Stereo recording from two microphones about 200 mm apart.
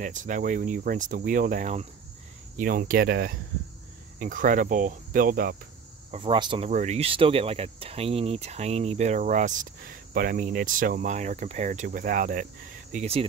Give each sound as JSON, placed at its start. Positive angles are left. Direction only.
{"t": 0.0, "sound": "speech", "side_deg": -40}
{"t": 6.1, "sound": "speech", "side_deg": -25}
{"t": 6.7, "sound": "speech", "side_deg": -35}
{"t": 12.9, "sound": "speech", "side_deg": -35}